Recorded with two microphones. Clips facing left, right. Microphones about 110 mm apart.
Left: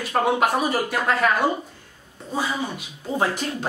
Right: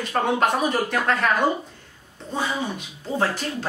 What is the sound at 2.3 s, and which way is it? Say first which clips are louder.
Speech: even; 10° left (ahead or behind).